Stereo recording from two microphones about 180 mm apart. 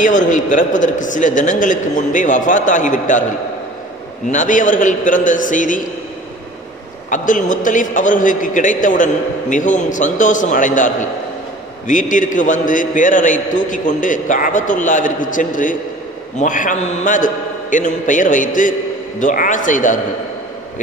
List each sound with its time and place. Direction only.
0.0 s a man's voice: 45° left (ahead or behind)
4.3 s a man's voice: 45° left (ahead or behind)
7.1 s a man's voice: 45° left (ahead or behind)